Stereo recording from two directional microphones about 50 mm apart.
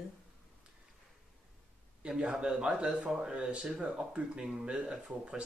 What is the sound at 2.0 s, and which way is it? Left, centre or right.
Speech, right.